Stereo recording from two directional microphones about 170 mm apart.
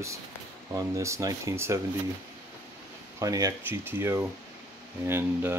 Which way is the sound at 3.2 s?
20° right (ahead or behind).